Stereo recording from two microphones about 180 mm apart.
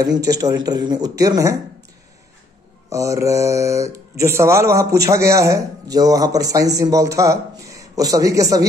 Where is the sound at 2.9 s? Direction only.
15° right (ahead or behind).